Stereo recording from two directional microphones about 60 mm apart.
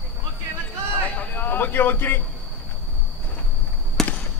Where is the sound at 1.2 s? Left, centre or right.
Left.